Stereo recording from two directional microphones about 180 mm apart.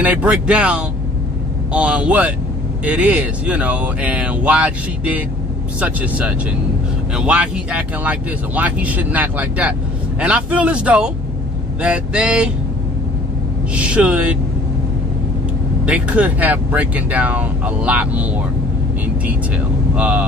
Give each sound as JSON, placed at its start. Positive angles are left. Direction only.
{"t": 0.0, "sound": "speech", "side_deg": -5}
{"t": 11.8, "sound": "vehicle", "side_deg": -5}
{"t": 13.7, "sound": "speech", "side_deg": -5}
{"t": 15.8, "sound": "speech", "side_deg": -5}
{"t": 19.2, "sound": "speech", "side_deg": -5}